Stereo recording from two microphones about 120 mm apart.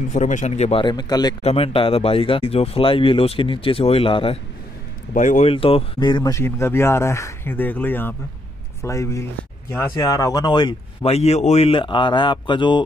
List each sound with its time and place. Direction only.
0.1 s speech: 80° left; by 0.8 s 60° left (ahead or behind)
0.8 s speech: 35° left (ahead or behind)
1.4 s speech: 55° left (ahead or behind)
5.1 s speech: 90° left
5.5 s speech: 50° left (ahead or behind)
5.9 s speech: 40° left (ahead or behind)
6.3 s speech: 20° left (ahead or behind)
9.9 s speech: 30° left (ahead or behind)
11.1 s speech: 60° left (ahead or behind); by 12.8 s 40° left (ahead or behind)